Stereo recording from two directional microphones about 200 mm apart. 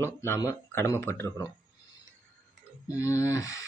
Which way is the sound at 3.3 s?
75° right (ahead or behind).